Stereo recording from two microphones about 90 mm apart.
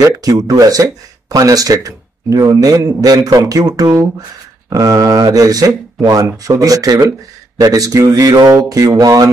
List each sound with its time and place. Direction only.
0.0 s speech: 40° right (ahead or behind)